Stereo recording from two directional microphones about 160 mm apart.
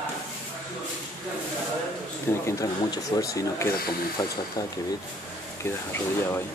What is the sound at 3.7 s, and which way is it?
Speech, 70° left (ahead or behind).